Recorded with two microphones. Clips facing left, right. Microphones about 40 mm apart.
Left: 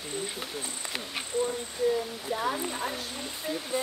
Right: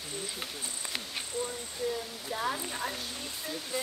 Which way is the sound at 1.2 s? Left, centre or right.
Centre.